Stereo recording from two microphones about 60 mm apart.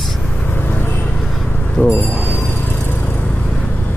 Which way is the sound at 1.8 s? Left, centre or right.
Left.